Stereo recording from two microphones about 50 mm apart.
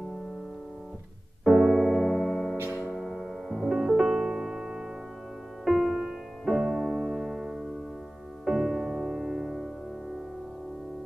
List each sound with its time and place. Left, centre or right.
1.4 s keyboard: centre
2.5 s music: right
2.9 s piano: centre
5.7 s music: centre